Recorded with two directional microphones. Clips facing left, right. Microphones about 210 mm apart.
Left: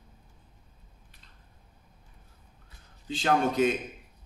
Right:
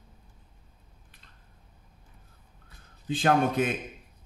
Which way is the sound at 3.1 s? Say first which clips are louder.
Right 2 dB; 55° right (ahead or behind).